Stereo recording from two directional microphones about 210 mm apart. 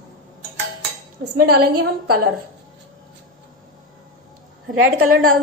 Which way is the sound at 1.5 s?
90° right.